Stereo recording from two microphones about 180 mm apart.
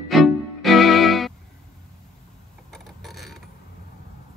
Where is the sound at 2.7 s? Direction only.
Centre (ahead or behind).